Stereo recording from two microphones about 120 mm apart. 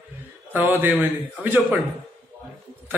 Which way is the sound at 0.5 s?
15° right (ahead or behind).